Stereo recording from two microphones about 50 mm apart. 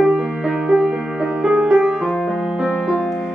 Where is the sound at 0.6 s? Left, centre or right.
Centre.